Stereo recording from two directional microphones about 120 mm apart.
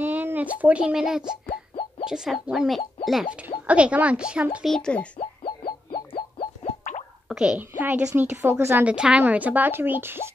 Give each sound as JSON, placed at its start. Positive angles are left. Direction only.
{"t": 0.0, "sound": "speech", "side_deg": -15}
{"t": 1.5, "sound": "plop", "side_deg": 50}
{"t": 2.0, "sound": "speech", "side_deg": -5}
{"t": 4.6, "sound": "a child's voice", "side_deg": 5}
{"t": 5.4, "sound": "music", "side_deg": 45}
{"t": 6.6, "sound": "plop", "side_deg": 90}
{"t": 7.2, "sound": "a child's voice", "side_deg": -5}
{"t": 8.9, "sound": "speech", "side_deg": -10}